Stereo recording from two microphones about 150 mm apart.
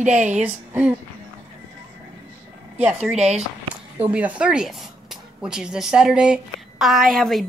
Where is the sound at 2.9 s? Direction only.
5° right (ahead or behind).